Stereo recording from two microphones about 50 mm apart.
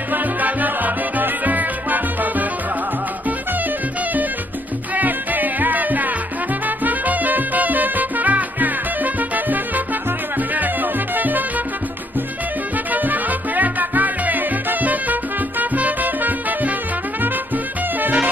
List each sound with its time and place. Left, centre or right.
0.1 s music: right
4.9 s music: right
12.9 s music: right